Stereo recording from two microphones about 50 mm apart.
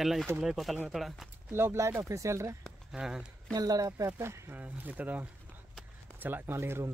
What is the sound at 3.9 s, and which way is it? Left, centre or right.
Speech, right.